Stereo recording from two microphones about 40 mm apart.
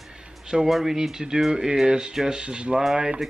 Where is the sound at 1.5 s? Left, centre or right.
Centre.